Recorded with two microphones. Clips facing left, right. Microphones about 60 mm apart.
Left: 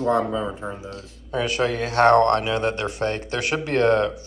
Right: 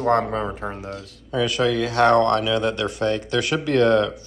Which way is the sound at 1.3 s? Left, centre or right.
Left.